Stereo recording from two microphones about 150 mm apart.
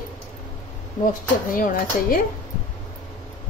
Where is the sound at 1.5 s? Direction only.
65° left (ahead or behind).